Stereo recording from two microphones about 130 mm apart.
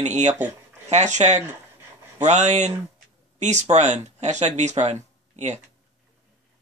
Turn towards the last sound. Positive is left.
turn(degrees=-60)  # may be behind; listen again after turning